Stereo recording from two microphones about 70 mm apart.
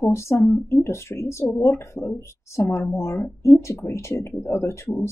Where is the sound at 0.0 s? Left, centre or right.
Left.